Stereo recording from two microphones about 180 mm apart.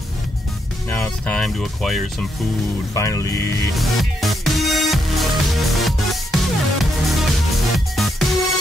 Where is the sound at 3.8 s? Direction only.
Centre (ahead or behind).